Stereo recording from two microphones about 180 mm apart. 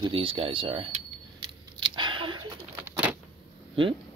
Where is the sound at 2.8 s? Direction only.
10° right (ahead or behind).